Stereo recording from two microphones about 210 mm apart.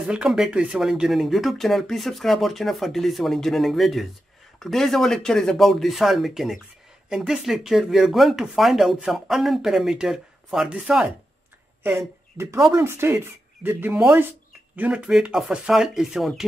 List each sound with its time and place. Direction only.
0.1 s speech: 5° right (ahead or behind)